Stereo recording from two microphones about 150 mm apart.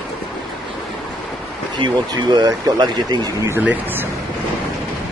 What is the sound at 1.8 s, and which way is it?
Speech, 30° right (ahead or behind).